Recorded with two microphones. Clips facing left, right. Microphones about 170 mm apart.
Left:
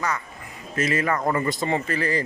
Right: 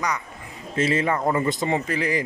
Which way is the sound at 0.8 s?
25° right (ahead or behind).